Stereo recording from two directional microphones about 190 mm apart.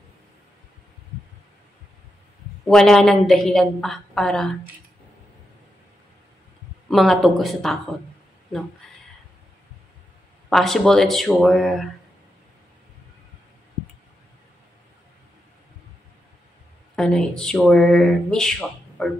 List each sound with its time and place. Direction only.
2.7 s speech: centre (ahead or behind)
6.9 s speech: centre (ahead or behind)
10.5 s speech: centre (ahead or behind)
16.9 s speech: 5° left (ahead or behind)